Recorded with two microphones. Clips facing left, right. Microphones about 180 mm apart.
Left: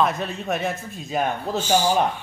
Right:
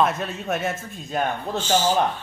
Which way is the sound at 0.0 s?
Centre (ahead or behind).